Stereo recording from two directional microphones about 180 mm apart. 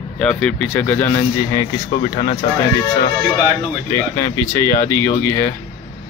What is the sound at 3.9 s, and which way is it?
Speech, 15° left (ahead or behind).